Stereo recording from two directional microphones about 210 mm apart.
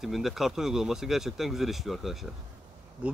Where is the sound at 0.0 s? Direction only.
Centre (ahead or behind).